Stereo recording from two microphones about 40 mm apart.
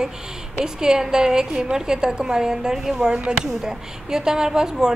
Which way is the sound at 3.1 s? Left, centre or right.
Right.